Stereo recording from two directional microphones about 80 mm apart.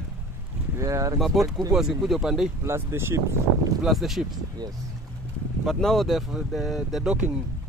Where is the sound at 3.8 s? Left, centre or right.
Centre.